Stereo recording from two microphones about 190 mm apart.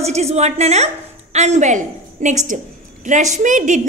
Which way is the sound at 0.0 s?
35° right (ahead or behind).